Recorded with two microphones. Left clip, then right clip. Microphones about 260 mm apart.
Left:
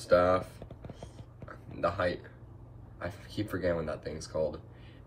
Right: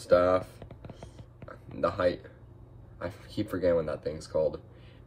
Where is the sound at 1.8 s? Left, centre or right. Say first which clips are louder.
Right 3 dB; centre.